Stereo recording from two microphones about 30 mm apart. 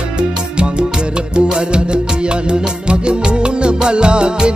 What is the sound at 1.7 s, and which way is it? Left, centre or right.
Music, right.